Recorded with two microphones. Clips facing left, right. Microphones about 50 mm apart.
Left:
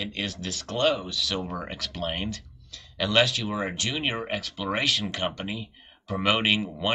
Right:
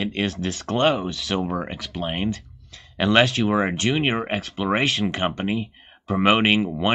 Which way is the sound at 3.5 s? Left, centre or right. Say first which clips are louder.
Right 8 dB; right.